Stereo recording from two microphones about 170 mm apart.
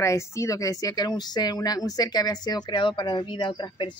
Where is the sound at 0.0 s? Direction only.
15° left (ahead or behind).